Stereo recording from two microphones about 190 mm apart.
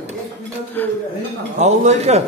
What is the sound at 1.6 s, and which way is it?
Speech, 35° right (ahead or behind).